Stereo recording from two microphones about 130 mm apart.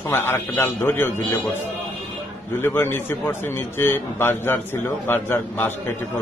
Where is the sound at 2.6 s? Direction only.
15° left (ahead or behind).